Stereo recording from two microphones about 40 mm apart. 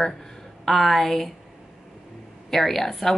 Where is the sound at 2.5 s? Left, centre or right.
Centre.